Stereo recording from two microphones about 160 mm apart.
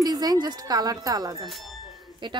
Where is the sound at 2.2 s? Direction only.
30° right (ahead or behind).